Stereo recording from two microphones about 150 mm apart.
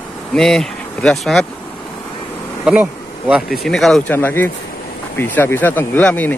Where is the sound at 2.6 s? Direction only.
10° right (ahead or behind).